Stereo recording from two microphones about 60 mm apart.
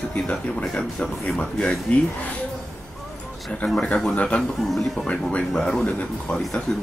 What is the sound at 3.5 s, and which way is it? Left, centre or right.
Speech, centre.